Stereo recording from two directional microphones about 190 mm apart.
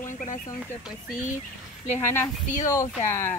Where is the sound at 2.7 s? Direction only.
15° left (ahead or behind).